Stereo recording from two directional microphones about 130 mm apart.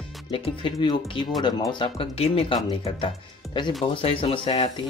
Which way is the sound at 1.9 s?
50° left (ahead or behind).